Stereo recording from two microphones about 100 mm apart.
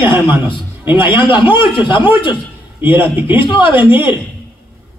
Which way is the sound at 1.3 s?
20° right (ahead or behind).